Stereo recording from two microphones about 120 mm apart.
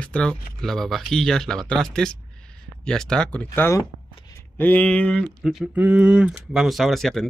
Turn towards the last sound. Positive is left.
turn(degrees=0)  # may be behind; listen again after turning